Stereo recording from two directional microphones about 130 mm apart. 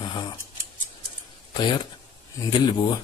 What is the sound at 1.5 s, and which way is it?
Speech, 35° left (ahead or behind).